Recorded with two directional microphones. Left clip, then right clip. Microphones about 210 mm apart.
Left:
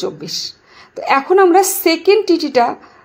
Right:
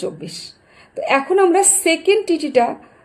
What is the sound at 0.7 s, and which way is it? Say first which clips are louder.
A woman's voice: left 2 dB; 40° left (ahead or behind).